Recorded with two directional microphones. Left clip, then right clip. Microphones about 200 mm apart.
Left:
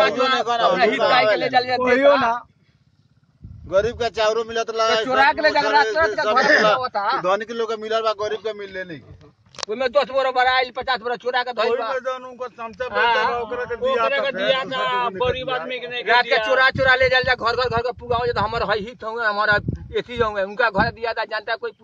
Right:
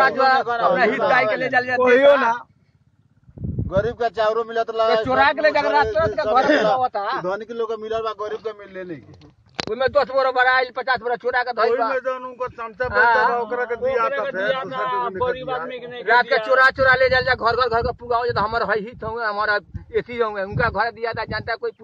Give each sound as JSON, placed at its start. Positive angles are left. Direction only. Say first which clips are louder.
{"t": 1.1, "sound": "speech", "louder": "left 1 dB", "side_deg": -25}
{"t": 1.8, "sound": "speech", "louder": "right 3 dB", "side_deg": -50}
{"t": 3.7, "sound": "a man's voice", "louder": "left 1 dB", "side_deg": 30}
{"t": 5.0, "sound": "speech", "louder": "even", "side_deg": -45}
{"t": 7.2, "sound": "a man's voice", "louder": "left 3 dB", "side_deg": 35}
{"t": 9.8, "sound": "speech", "louder": "right 1 dB", "side_deg": -10}
{"t": 12.0, "sound": "speech", "louder": "right 2 dB", "side_deg": -25}
{"t": 12.9, "sound": "speech", "louder": "right 2 dB", "side_deg": -5}
{"t": 14.5, "sound": "a man's voice", "louder": "left 2 dB", "side_deg": 50}
{"t": 16.1, "sound": "a man's voice", "louder": "right 1 dB", "side_deg": 0}